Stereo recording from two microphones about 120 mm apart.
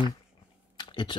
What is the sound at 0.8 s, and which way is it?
Computer keyboard, 40° left (ahead or behind).